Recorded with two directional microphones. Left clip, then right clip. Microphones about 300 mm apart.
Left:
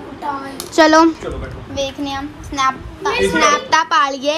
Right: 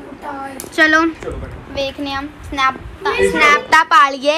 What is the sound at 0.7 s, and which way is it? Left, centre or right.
Speech, left.